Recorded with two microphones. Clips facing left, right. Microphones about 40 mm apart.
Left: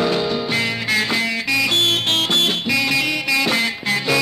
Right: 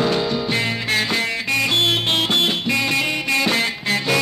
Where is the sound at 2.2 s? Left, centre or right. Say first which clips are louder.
Even; centre.